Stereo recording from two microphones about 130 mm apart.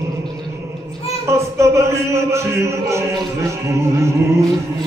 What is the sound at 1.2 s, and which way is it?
Music, 20° right (ahead or behind).